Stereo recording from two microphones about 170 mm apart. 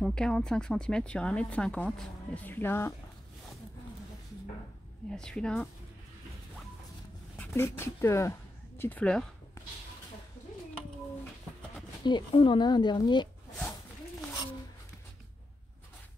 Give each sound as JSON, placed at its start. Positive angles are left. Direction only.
{"t": 0.0, "sound": "speech", "side_deg": 5}
{"t": 5.1, "sound": "speech", "side_deg": 5}
{"t": 7.3, "sound": "speech", "side_deg": 15}
{"t": 12.0, "sound": "speech", "side_deg": 25}